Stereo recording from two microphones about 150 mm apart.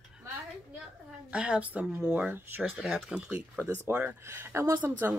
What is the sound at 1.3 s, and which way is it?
Speech, 10° right (ahead or behind).